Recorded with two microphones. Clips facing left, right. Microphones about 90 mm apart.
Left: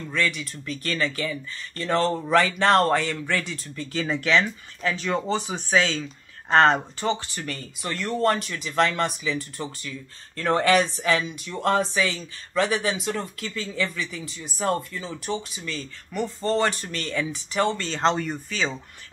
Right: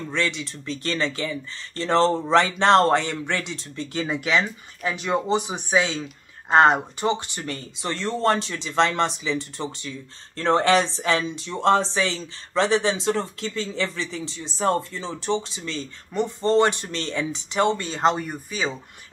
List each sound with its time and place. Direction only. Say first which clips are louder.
0.1 s speech: even; 25° right (ahead or behind)